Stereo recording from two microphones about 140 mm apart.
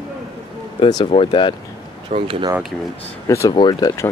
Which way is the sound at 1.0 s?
40° left (ahead or behind).